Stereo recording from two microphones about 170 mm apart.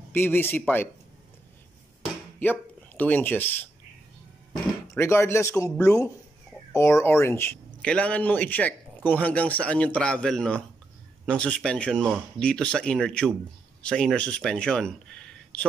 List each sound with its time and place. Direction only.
0.1 s speech: 10° left (ahead or behind)
2.4 s speech: 10° left (ahead or behind)
4.8 s speech: 15° left (ahead or behind)